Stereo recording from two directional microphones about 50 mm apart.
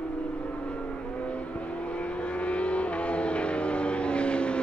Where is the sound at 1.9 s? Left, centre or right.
Left.